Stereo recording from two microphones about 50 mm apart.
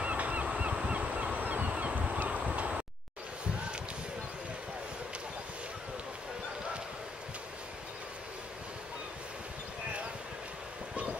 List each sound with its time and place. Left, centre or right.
0.0 s honk: right